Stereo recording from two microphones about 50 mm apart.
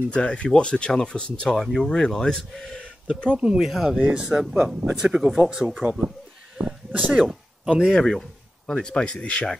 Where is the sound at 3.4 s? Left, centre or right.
Centre.